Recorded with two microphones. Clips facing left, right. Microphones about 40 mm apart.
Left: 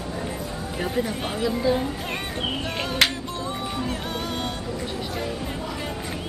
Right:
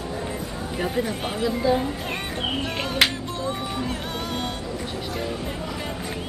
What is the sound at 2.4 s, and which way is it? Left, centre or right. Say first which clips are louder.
Music: right 2 dB; centre.